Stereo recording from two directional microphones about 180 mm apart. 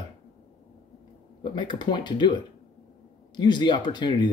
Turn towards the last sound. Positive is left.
turn(degrees=25)  # may be behind; listen again after turning